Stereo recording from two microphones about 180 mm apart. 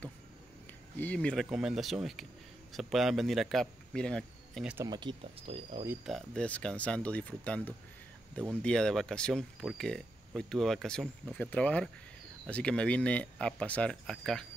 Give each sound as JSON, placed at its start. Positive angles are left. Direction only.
{"t": 0.9, "sound": "speech", "side_deg": 10}
{"t": 4.8, "sound": "speech", "side_deg": -25}
{"t": 6.0, "sound": "speech", "side_deg": 5}